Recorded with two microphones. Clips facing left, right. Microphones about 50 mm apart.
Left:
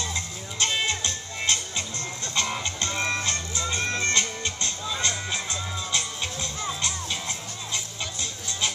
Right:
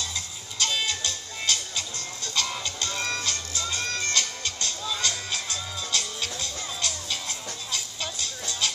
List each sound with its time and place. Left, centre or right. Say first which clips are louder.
0.0 s music: left 3 dB; left